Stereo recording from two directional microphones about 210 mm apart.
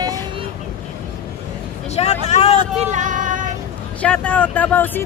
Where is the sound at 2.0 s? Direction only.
30° left (ahead or behind).